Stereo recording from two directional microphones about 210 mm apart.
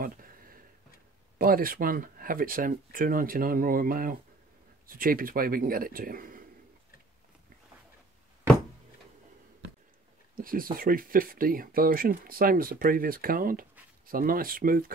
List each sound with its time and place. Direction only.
0.0 s a sound: 45° right (ahead or behind)
1.4 s speech: 45° right (ahead or behind)
10.3 s speech: 45° right (ahead or behind)